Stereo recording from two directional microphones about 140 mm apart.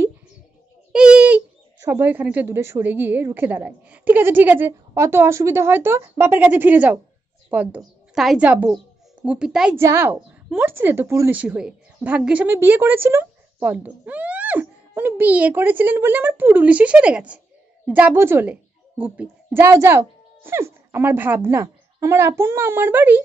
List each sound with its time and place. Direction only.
0.9 s a woman's voice: 5° right (ahead or behind)
9.8 s a woman's voice: 20° right (ahead or behind)